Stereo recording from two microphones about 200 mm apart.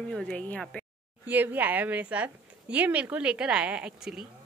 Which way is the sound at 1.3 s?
10° right (ahead or behind).